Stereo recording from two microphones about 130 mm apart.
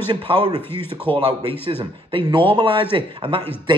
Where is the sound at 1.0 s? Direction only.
40° right (ahead or behind).